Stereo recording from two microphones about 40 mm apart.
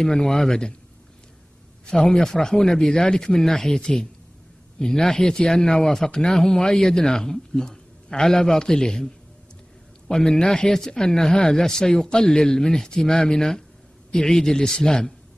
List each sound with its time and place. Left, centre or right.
0.0 s speech: centre
1.9 s speech: centre